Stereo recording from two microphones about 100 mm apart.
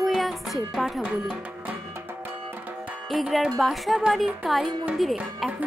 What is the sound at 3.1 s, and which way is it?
Speech, 5° right (ahead or behind).